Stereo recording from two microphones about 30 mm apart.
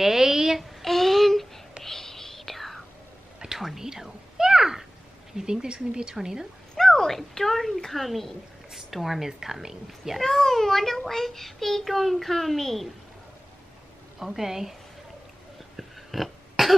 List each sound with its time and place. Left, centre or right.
0.0 s child singing: centre
0.8 s child singing: centre
1.9 s whispering: centre
3.8 s whispering: centre
5.5 s speech: right
6.1 s a woman's voice: centre
6.8 s a woman's voice: centre
8.7 s a woman's voice: centre
10.2 s a child's voice: centre
14.2 s a woman's voice: centre
15.7 s a sound: centre